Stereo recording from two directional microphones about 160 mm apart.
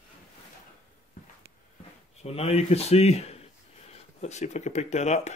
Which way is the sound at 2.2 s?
40° left (ahead or behind).